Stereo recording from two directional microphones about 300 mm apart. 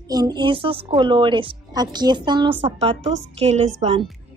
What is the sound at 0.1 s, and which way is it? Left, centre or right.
A woman's voice, centre.